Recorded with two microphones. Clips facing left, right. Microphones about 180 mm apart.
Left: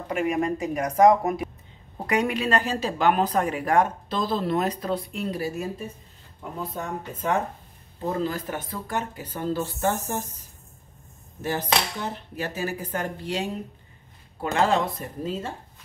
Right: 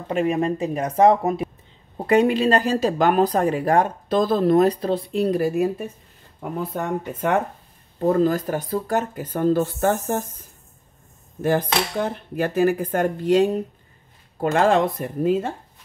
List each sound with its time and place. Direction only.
0.1 s speech: 30° right (ahead or behind)
4.1 s speech: 50° right (ahead or behind); by 5.3 s 30° right (ahead or behind)
5.3 s speech: 55° right (ahead or behind)
8.0 s speech: 50° right (ahead or behind)
11.4 s speech: 55° right (ahead or behind)